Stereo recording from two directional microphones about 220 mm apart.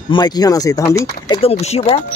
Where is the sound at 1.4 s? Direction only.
30° left (ahead or behind).